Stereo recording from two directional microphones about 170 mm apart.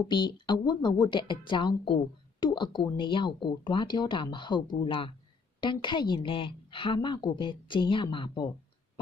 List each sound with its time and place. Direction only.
0.1 s a woman's voice: 25° left (ahead or behind)